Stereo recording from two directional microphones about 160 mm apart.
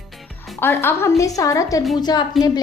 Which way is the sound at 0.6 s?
15° left (ahead or behind).